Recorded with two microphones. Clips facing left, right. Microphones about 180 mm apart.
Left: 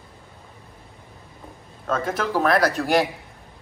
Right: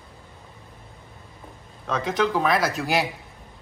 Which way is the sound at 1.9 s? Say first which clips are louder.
Even; centre (ahead or behind).